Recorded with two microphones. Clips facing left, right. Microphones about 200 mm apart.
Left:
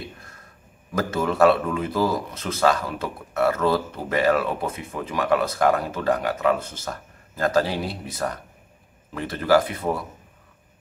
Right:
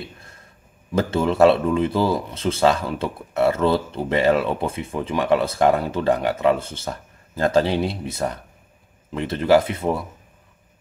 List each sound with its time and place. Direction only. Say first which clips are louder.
0.9 s speech: right 3 dB; 25° right (ahead or behind)